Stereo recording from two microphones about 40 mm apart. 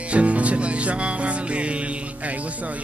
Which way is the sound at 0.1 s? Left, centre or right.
Right.